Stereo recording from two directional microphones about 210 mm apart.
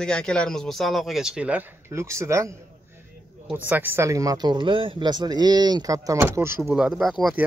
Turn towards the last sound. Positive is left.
turn(degrees=0)  # may be behind; listen again after turning